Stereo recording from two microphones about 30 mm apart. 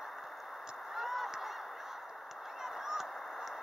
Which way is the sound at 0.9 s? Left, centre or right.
Centre.